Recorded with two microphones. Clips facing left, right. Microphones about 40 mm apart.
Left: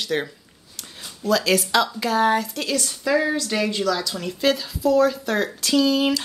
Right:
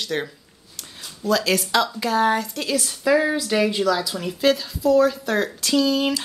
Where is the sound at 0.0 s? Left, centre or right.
Centre.